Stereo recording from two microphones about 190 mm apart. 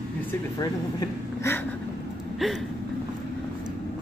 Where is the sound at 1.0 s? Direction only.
15° left (ahead or behind).